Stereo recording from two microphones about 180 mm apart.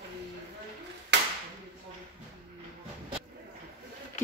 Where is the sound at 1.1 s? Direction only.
75° right (ahead or behind).